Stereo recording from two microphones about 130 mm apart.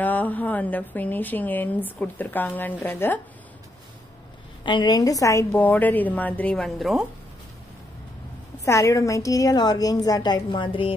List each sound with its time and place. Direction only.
0.0 s a woman's voice: 10° left (ahead or behind)
4.6 s a woman's voice: 35° left (ahead or behind); by 7.1 s centre (ahead or behind)
8.6 s a woman's voice: 25° left (ahead or behind); by 11.0 s 40° left (ahead or behind)